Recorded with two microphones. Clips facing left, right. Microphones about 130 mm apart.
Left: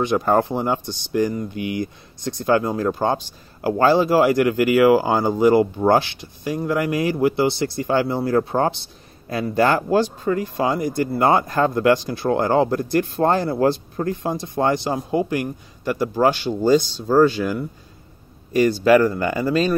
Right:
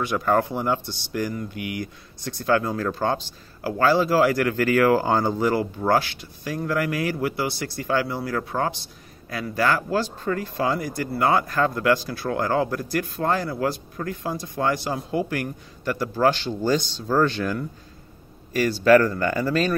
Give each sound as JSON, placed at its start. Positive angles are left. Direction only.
{"t": 0.0, "sound": "speech", "side_deg": 20}